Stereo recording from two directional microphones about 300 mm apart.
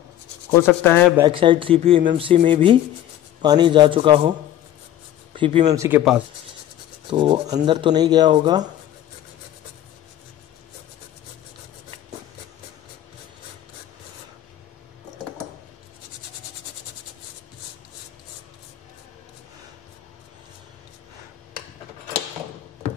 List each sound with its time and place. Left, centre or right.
0.5 s rub: centre
1.1 s speech: centre
5.3 s speech: centre
7.1 s speech: centre